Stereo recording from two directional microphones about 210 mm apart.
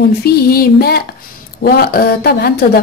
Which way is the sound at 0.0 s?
50° left (ahead or behind).